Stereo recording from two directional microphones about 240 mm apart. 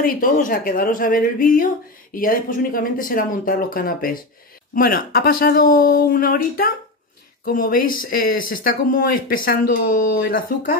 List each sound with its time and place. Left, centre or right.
0.0 s speech: left